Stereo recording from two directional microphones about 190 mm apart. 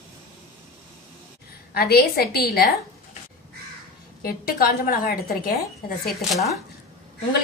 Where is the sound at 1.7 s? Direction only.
55° left (ahead or behind).